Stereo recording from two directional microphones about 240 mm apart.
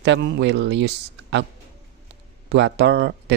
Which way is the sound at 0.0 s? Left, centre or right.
Right.